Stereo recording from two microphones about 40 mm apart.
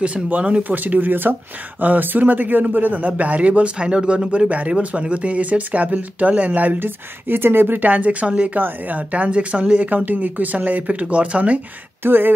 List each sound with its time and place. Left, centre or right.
0.0 s a man's voice: right
0.7 s a man's voice: right
4.5 s a man's voice: right
6.8 s speech: right
8.5 s a man's voice: right
9.8 s a man's voice: right
12.0 s speech: right